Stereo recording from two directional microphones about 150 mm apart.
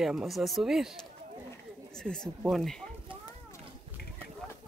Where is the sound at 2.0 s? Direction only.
Centre (ahead or behind).